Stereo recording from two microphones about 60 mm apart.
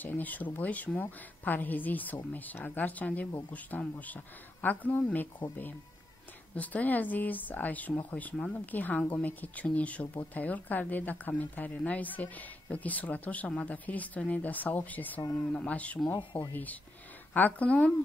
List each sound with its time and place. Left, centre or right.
0.0 s speech: left